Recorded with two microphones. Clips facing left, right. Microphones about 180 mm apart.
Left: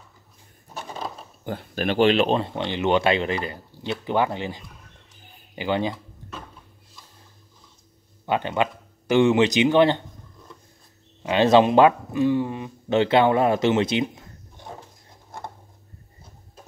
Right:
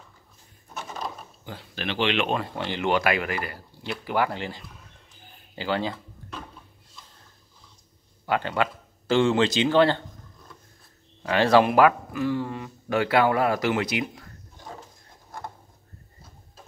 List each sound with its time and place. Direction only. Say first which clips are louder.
0.7 s a sound: left 2 dB; 30° left (ahead or behind)
1.4 s speech: left 8 dB; 50° left (ahead or behind); by 5.9 s 20° left (ahead or behind)
8.3 s speech: left 2 dB; 20° left (ahead or behind)
11.2 s speech: left 3 dB; 20° left (ahead or behind)